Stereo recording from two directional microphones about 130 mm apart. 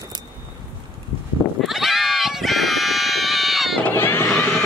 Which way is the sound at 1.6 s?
Centre (ahead or behind).